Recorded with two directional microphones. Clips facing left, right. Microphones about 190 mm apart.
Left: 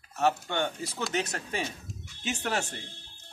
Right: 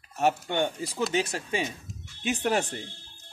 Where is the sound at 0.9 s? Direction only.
5° right (ahead or behind).